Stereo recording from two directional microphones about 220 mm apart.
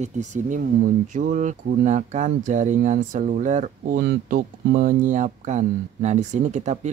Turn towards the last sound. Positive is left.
turn(degrees=-30)  # may be behind; listen again after turning